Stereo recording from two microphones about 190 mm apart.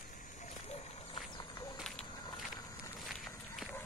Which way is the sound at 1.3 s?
25° left (ahead or behind).